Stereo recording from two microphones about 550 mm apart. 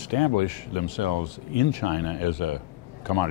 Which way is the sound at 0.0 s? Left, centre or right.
Left.